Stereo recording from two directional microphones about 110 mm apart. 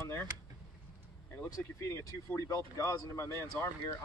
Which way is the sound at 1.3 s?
25° left (ahead or behind).